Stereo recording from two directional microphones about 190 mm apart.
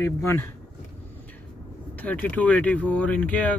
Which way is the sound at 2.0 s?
10° left (ahead or behind).